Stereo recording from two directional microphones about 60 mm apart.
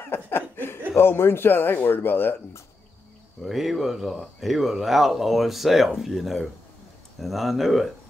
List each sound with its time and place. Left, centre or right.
0.1 s a man's voice: left
3.4 s speech: centre